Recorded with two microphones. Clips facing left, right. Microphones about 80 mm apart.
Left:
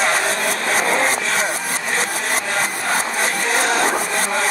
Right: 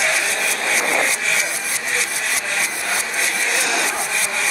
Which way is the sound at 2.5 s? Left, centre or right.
Left.